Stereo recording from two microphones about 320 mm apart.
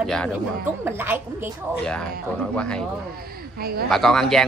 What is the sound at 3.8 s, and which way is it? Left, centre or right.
Speech, centre.